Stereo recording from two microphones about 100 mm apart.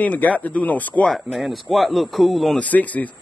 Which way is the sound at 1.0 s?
Centre (ahead or behind).